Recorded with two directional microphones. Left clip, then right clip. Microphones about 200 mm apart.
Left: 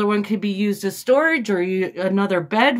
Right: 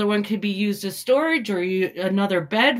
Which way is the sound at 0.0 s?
15° left (ahead or behind).